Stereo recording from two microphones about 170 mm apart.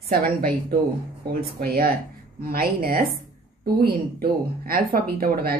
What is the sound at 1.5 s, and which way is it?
Speech, 60° right (ahead or behind).